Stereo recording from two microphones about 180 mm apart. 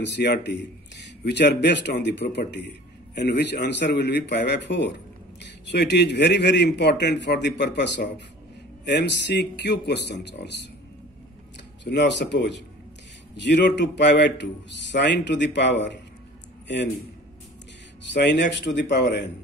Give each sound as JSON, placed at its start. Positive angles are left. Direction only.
{"t": 0.0, "sound": "a man's voice", "side_deg": 70}
{"t": 11.8, "sound": "a man's voice", "side_deg": 75}
{"t": 18.1, "sound": "a man's voice", "side_deg": 75}